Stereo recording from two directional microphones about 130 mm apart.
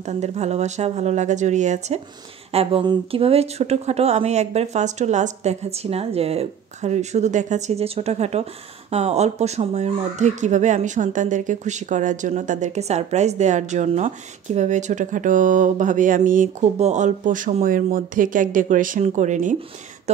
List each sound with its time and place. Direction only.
0.0 s speech: 60° right (ahead or behind)
2.5 s speech: 50° right (ahead or behind); by 19.5 s 70° right (ahead or behind)